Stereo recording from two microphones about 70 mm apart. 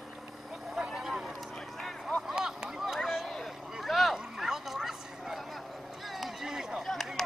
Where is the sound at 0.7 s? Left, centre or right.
Centre.